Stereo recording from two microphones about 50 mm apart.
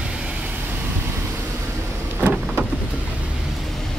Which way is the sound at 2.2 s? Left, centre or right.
Right.